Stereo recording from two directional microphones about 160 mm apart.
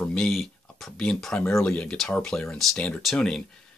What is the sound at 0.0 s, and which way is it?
Speech, 5° left (ahead or behind).